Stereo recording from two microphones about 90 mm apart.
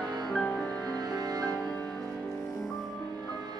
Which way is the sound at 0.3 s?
15° left (ahead or behind).